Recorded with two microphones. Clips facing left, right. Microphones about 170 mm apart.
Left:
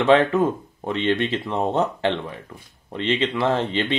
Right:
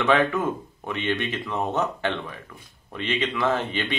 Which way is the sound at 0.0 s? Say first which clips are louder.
Left 5 dB; 25° left (ahead or behind).